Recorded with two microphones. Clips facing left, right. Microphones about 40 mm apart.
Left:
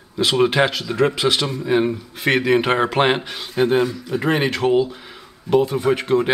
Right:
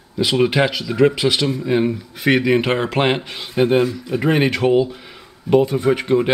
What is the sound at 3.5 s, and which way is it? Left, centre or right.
Speech, centre.